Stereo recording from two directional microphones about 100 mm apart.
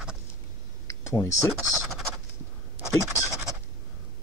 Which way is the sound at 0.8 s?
30° left (ahead or behind).